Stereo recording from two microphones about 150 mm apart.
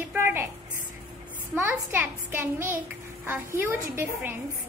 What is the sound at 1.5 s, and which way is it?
A woman's voice, 15° right (ahead or behind).